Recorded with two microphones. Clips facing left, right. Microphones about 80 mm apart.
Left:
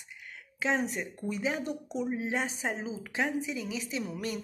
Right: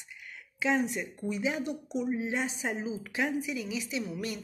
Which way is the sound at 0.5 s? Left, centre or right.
Left.